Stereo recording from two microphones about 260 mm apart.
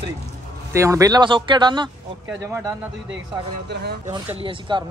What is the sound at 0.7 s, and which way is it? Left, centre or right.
Speech, centre.